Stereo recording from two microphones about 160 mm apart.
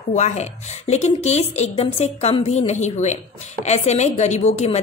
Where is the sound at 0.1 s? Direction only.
45° left (ahead or behind).